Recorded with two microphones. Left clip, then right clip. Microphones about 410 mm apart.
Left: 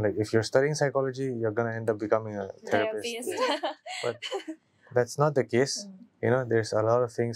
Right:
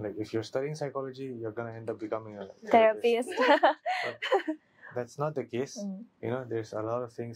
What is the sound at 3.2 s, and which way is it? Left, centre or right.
A woman's voice, right.